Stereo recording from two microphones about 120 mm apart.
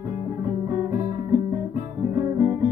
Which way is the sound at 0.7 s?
25° right (ahead or behind).